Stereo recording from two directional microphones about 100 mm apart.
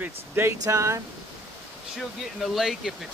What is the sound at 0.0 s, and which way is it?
Speech, 25° right (ahead or behind).